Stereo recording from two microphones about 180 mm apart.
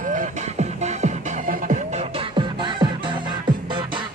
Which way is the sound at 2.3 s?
25° right (ahead or behind).